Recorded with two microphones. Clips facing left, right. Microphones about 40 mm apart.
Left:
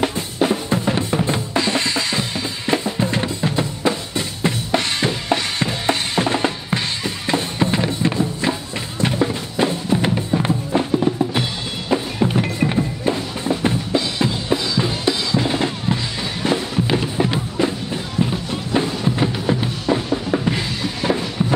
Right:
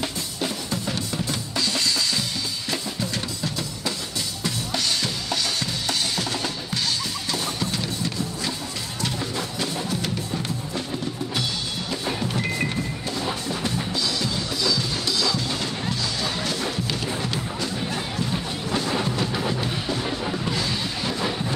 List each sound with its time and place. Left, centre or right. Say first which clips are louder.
0.0 s drum: left 9 dB; left
4.4 s drum kit: left 8 dB; left
7.2 s music: left 10 dB; left
11.9 s music: left 9 dB; left
19.1 s music: left 5 dB; left